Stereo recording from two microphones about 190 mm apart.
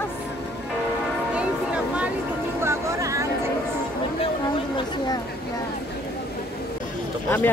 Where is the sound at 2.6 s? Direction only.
15° right (ahead or behind).